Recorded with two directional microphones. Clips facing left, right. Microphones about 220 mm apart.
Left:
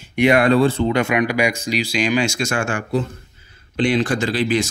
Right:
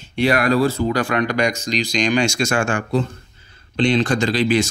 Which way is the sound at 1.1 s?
10° left (ahead or behind).